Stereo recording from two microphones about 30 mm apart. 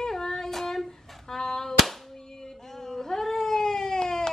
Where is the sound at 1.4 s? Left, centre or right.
Centre.